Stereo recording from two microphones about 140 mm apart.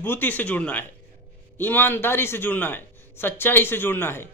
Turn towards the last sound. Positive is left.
turn(degrees=15)  # may be behind; listen again after turning